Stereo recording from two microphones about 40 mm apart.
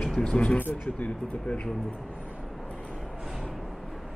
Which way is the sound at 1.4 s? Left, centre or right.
Left.